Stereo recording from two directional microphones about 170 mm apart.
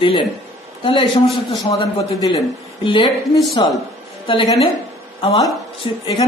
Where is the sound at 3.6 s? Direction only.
25° left (ahead or behind).